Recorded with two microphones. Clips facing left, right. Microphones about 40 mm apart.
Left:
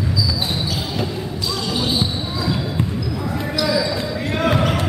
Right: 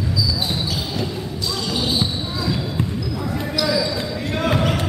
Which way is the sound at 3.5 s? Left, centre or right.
Centre.